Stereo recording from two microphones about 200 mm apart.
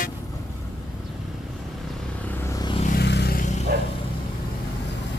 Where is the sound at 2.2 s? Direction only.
10° left (ahead or behind).